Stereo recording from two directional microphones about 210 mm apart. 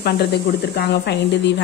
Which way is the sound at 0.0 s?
50° left (ahead or behind).